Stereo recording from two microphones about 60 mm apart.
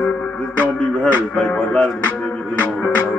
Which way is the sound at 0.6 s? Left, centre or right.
Left.